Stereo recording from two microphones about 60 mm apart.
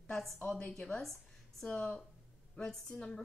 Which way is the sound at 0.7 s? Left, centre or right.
Centre.